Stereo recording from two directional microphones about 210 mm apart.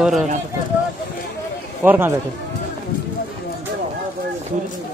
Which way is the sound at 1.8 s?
10° right (ahead or behind).